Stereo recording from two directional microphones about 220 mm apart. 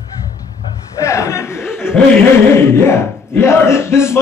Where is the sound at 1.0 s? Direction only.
15° left (ahead or behind).